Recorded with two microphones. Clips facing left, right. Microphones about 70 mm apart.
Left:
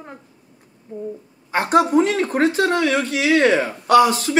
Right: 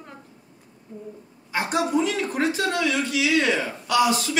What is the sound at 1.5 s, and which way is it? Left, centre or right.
A woman's voice, left.